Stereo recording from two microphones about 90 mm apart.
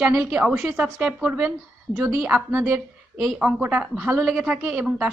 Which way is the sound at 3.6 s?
20° right (ahead or behind).